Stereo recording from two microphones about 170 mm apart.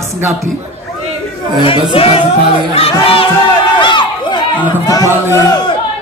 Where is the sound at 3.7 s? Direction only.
30° left (ahead or behind).